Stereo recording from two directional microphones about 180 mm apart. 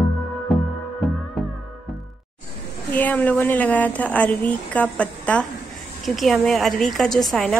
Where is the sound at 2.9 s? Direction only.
10° left (ahead or behind).